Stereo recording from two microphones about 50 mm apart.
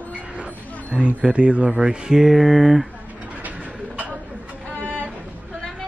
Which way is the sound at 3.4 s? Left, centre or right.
Right.